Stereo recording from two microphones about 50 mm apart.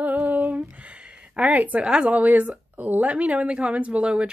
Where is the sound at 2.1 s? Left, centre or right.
Right.